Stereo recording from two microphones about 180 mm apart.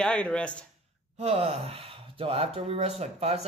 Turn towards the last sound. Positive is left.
turn(degrees=-35)  # may be behind; listen again after turning